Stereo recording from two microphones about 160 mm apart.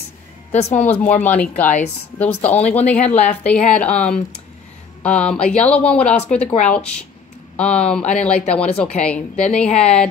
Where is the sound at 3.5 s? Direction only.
10° left (ahead or behind).